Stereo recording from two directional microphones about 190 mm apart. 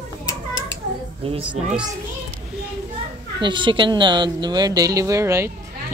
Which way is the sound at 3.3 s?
25° right (ahead or behind).